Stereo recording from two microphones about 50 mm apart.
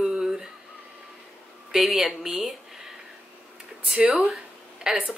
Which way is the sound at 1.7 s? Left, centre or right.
Centre.